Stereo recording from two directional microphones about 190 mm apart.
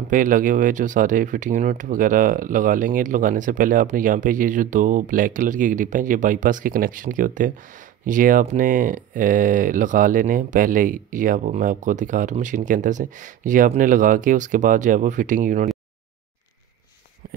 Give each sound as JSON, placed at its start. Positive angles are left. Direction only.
{"t": 0.1, "sound": "speech", "side_deg": -45}